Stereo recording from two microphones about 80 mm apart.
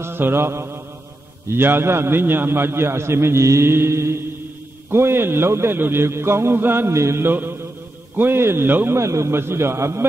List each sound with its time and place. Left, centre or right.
0.0 s mantra: right
1.5 s a man's voice: right